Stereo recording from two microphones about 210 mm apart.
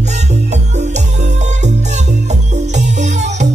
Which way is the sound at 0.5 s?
35° right (ahead or behind).